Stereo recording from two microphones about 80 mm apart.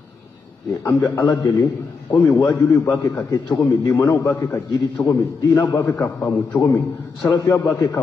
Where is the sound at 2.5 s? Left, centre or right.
Left.